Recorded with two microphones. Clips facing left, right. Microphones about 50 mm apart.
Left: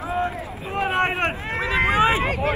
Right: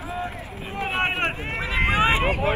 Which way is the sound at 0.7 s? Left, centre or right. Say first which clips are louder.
Left 3 dB; left.